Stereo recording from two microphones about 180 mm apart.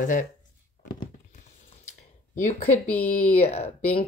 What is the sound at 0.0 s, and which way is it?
Speech, 50° left (ahead or behind).